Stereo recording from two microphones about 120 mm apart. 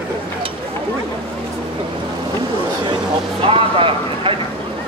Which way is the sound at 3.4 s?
50° right (ahead or behind).